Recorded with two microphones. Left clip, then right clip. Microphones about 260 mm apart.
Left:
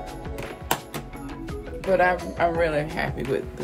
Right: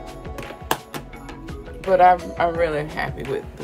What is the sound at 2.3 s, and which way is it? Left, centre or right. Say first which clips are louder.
Speech: right 2 dB; centre.